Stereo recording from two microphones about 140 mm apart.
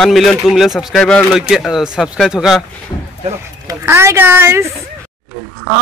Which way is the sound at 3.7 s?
20° right (ahead or behind).